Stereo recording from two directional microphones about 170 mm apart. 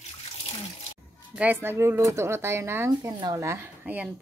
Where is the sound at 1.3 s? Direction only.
10° right (ahead or behind).